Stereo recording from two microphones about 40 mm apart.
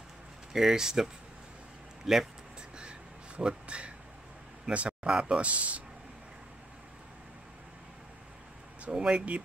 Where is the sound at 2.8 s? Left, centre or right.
Right.